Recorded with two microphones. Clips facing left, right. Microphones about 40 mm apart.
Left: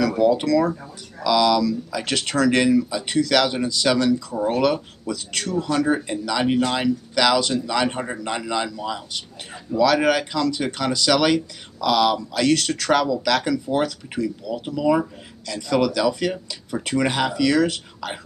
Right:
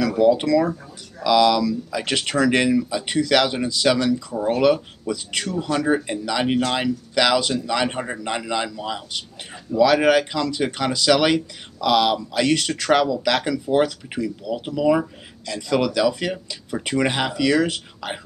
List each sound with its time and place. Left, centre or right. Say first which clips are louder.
0.2 s speech: right 2 dB; centre